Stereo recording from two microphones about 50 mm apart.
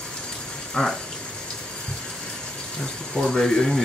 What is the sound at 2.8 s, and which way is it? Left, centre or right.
Speech, centre.